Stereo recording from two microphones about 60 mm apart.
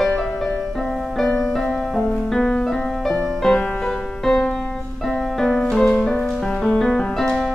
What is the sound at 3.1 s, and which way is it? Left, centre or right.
Music, centre.